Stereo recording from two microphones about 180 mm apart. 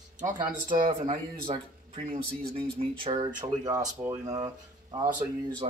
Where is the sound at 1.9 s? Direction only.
50° right (ahead or behind).